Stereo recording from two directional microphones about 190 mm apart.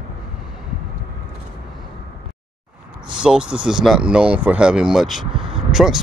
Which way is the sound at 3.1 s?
5° right (ahead or behind).